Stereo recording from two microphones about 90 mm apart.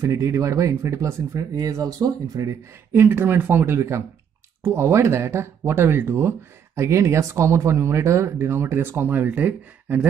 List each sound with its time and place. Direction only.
0.0 s speech: 35° right (ahead or behind)
2.9 s speech: 25° right (ahead or behind)